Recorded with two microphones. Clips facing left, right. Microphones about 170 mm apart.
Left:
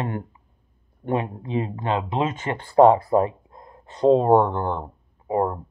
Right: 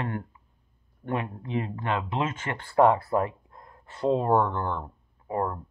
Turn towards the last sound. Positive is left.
turn(degrees=20)  # may be behind; listen again after turning